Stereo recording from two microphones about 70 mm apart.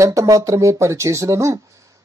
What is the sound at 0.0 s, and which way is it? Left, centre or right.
Speech, right.